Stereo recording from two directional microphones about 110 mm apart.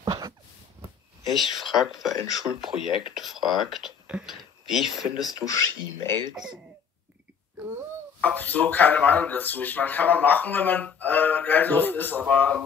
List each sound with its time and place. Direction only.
0.0 s a sound: 35° right (ahead or behind)
1.2 s speech: centre (ahead or behind)
5.3 s speech: 30° left (ahead or behind)
6.3 s speech: 5° right (ahead or behind)
8.2 s speech: 15° left (ahead or behind)